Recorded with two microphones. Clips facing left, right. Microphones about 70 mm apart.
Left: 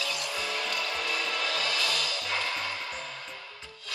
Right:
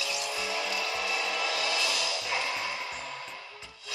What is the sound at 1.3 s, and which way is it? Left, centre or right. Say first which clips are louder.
Music: even; left.